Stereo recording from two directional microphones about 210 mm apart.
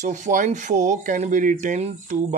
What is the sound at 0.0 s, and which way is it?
Speech, 35° right (ahead or behind).